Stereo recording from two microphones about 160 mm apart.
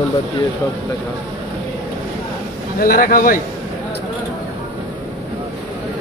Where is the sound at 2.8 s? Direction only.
60° left (ahead or behind).